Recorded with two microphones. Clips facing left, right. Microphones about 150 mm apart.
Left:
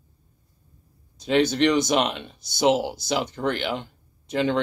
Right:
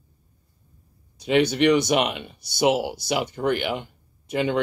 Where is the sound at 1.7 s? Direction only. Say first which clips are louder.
Right 2 dB; 60° right (ahead or behind).